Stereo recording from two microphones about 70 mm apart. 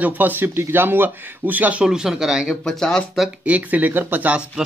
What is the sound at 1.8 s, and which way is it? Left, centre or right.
Speech, centre.